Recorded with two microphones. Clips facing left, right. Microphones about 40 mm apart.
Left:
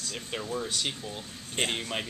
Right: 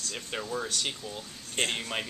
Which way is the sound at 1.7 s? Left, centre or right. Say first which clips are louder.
Even; centre.